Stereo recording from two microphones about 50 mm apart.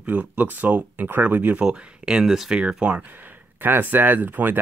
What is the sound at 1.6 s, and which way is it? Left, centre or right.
Speech, centre.